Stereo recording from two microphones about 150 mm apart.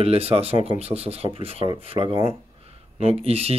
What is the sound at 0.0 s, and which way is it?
Speech, 40° right (ahead or behind).